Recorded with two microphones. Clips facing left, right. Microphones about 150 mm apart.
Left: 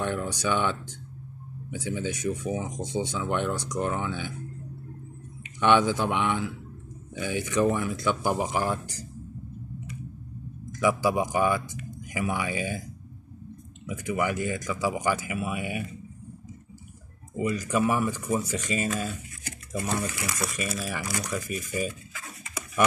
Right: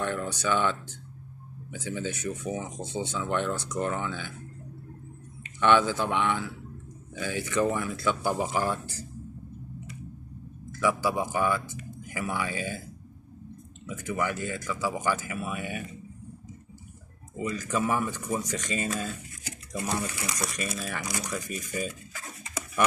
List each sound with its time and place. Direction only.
0.0 s speech: 15° left (ahead or behind)
5.4 s speech: 15° left (ahead or behind)
10.7 s speech: 15° left (ahead or behind)
17.4 s speech: 10° left (ahead or behind)